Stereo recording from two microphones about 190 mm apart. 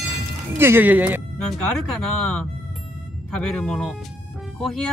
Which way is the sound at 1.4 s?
5° left (ahead or behind).